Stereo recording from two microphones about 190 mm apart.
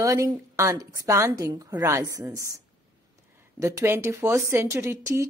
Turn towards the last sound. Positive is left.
turn(degrees=-15)  # may be behind; listen again after turning